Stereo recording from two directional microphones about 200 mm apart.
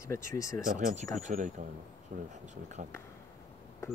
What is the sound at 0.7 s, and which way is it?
Speech, 40° right (ahead or behind).